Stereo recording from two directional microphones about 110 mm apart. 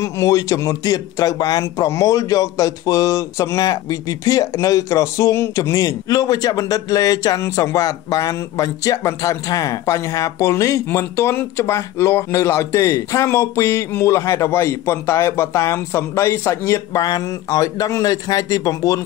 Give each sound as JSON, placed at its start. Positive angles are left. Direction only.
{"t": 0.0, "sound": "speech", "side_deg": 30}